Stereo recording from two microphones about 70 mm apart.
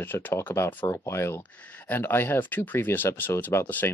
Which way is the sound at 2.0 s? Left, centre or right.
Left.